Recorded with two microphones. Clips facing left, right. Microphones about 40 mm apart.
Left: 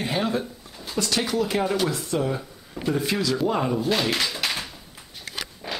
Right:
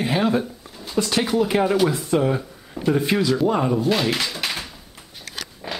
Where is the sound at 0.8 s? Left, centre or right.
Centre.